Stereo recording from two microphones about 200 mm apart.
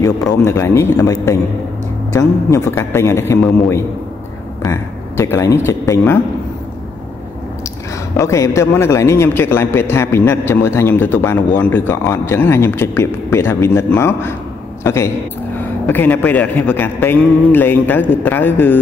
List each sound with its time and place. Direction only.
0.0 s a man's voice: 15° left (ahead or behind)
8.2 s a man's voice: 15° left (ahead or behind)